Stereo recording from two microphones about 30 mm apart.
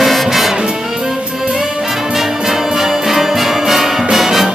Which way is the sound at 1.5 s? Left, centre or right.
Centre.